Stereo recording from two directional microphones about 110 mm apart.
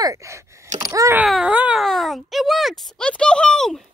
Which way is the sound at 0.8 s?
30° right (ahead or behind).